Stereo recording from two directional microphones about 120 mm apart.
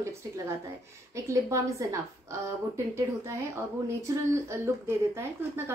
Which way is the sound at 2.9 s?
25° right (ahead or behind).